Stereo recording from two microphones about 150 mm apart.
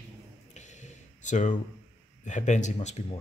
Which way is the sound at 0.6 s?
50° left (ahead or behind).